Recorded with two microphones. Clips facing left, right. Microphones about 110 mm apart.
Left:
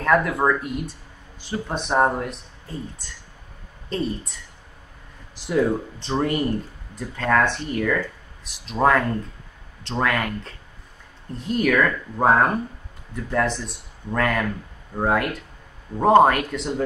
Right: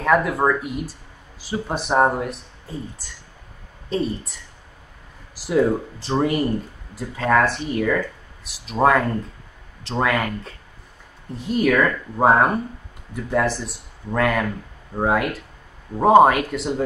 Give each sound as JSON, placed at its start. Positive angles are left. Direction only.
{"t": 0.0, "sound": "speech", "side_deg": -5}